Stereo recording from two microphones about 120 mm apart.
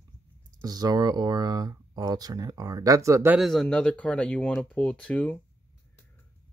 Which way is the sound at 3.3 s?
Centre (ahead or behind).